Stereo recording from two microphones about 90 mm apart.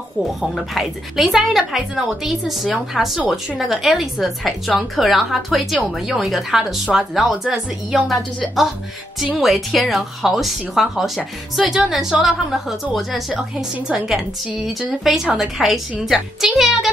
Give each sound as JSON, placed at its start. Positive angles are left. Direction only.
{"t": 0.4, "sound": "speech", "side_deg": 0}
{"t": 9.4, "sound": "a woman's voice", "side_deg": 0}